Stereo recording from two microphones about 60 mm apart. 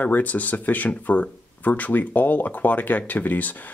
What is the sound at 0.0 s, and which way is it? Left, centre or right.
Speech, left.